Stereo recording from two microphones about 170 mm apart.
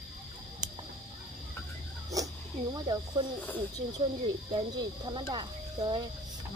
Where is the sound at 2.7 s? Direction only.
25° right (ahead or behind).